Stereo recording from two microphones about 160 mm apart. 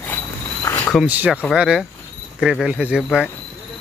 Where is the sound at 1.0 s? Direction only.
10° right (ahead or behind).